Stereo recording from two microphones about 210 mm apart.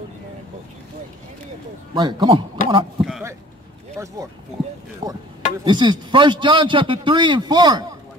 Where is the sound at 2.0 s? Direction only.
20° right (ahead or behind).